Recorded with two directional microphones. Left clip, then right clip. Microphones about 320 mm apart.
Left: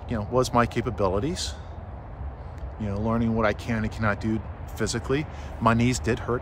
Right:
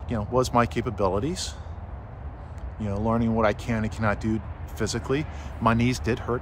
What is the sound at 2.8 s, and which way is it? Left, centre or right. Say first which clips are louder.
Speech: right 1 dB; centre.